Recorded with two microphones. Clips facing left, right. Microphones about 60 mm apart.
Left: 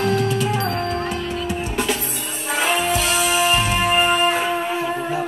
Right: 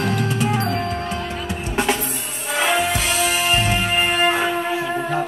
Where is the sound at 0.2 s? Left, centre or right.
Right.